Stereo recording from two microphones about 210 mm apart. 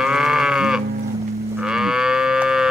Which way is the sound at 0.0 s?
Centre (ahead or behind).